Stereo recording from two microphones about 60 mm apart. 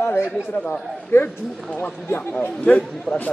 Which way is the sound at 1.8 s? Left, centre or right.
Left.